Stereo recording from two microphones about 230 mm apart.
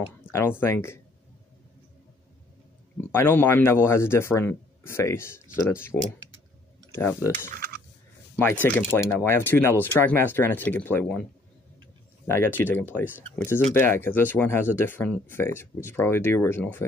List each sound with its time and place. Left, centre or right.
0.2 s speech: centre
3.1 s speech: centre
7.5 s a sound: right
8.6 s speech: centre
12.3 s speech: centre